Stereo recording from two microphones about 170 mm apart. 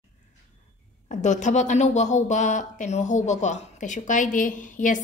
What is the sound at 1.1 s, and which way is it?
Speech, 45° left (ahead or behind).